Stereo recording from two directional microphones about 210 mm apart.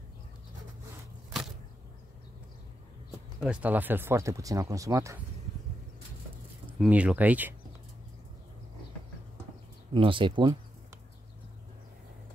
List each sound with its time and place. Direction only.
3.3 s speech: 5° right (ahead or behind)
6.8 s speech: 5° right (ahead or behind)
9.9 s speech: 25° right (ahead or behind)